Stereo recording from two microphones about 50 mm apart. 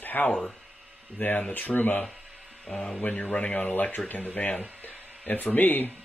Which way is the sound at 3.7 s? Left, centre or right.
Left.